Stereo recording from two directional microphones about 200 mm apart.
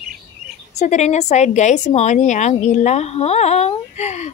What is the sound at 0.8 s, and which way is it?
A woman's voice, 35° left (ahead or behind).